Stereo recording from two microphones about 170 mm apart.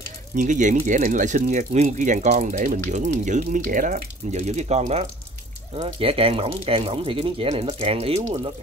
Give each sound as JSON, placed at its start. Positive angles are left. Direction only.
{"t": 0.4, "sound": "speech", "side_deg": -50}